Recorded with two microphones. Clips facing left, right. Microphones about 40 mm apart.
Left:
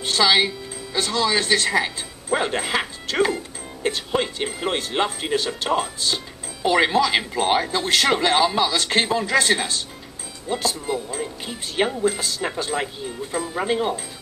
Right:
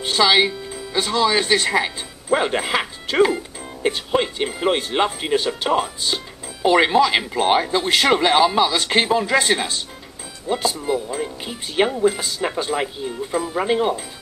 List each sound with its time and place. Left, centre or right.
0.0 s speech: centre